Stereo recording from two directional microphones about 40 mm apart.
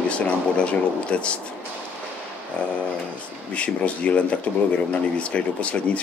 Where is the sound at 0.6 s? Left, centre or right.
Left.